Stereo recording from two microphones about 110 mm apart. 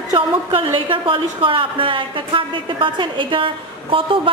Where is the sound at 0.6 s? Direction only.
50° right (ahead or behind).